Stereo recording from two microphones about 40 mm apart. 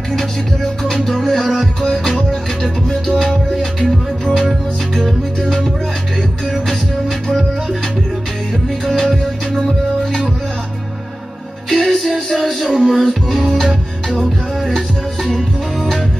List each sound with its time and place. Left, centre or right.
0.8 s music: centre
8.8 s music: centre
11.7 s music: centre
15.2 s music: centre